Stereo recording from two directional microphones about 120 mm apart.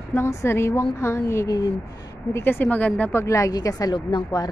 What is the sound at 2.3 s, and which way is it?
Speech, 20° left (ahead or behind).